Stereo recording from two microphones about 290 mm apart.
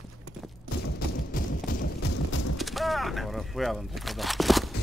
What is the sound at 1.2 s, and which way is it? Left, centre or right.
Music, left.